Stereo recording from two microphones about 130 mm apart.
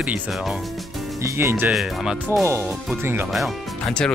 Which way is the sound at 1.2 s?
20° right (ahead or behind).